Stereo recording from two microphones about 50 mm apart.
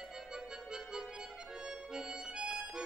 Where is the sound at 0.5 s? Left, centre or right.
Centre.